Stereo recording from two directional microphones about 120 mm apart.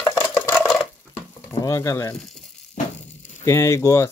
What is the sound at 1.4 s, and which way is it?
Speech, 25° left (ahead or behind).